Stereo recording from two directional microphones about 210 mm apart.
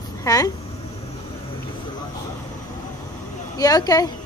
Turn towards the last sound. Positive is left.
turn(degrees=20)  # may be behind; listen again after turning